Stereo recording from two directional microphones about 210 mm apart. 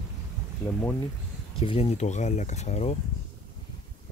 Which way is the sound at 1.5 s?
30° left (ahead or behind).